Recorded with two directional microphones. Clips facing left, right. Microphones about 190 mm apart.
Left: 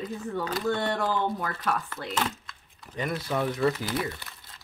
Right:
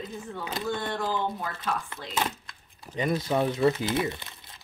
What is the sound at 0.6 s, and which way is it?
Speech, 65° left (ahead or behind).